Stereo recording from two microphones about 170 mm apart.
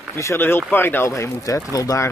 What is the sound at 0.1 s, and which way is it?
Speech, 15° left (ahead or behind).